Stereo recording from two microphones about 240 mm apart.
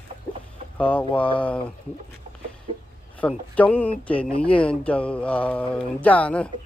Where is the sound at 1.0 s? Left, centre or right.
Left.